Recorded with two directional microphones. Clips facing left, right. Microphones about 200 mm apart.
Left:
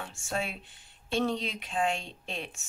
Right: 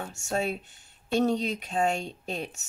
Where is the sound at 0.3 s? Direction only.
40° right (ahead or behind).